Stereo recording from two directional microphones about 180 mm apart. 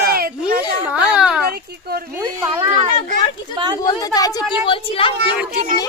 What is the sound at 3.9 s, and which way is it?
A woman's voice, 20° left (ahead or behind).